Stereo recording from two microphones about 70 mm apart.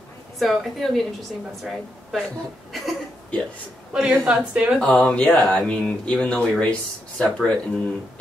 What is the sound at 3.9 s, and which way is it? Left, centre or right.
Speech, centre.